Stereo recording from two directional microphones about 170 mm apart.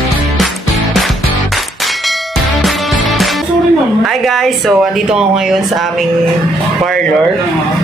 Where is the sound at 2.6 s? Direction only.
Centre (ahead or behind).